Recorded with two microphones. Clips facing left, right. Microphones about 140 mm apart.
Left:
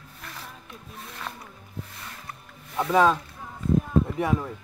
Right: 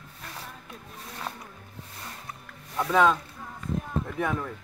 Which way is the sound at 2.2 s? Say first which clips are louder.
Even; centre (ahead or behind).